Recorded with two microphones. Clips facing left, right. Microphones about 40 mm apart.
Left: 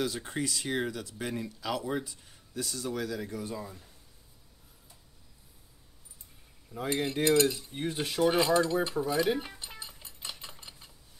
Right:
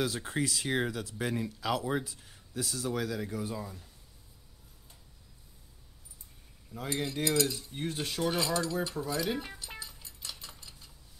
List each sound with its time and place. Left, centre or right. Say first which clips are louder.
0.0 s speech: right 1 dB; centre
6.9 s cutlery: left 5 dB; left
7.5 s cutlery: left 2 dB; centre
8.2 s cutlery: left 6 dB; left
9.8 s a sound: even; left